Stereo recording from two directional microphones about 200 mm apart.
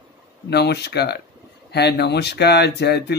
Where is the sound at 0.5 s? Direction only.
55° left (ahead or behind).